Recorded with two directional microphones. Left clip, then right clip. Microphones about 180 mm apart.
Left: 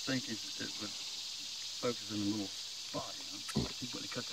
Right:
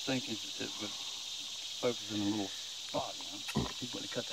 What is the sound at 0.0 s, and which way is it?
Speech, 25° left (ahead or behind).